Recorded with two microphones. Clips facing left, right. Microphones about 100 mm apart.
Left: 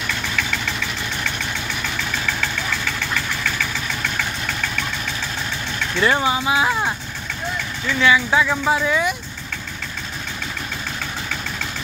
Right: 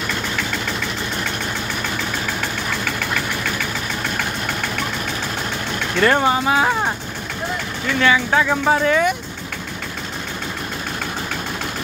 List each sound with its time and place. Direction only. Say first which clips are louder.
5.9 s speech: right 3 dB; 50° right (ahead or behind)
8.0 s speech: even; 40° right (ahead or behind)
8.8 s speech: right 4 dB; 55° right (ahead or behind)